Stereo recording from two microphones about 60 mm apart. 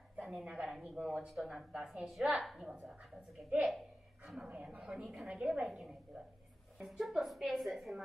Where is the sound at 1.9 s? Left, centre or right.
Centre.